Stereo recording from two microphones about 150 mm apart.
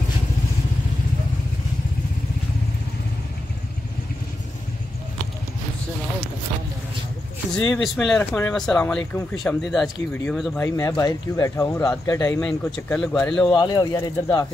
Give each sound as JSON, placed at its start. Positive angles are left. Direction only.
{"t": 7.7, "sound": "speech", "side_deg": 0}
{"t": 8.2, "sound": "speech", "side_deg": 15}
{"t": 10.9, "sound": "speech", "side_deg": 25}
{"t": 12.4, "sound": "speech", "side_deg": 10}
{"t": 13.5, "sound": "speech", "side_deg": 30}